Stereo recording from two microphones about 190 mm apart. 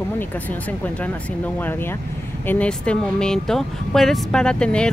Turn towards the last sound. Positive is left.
turn(degrees=5)  # may be behind; listen again after turning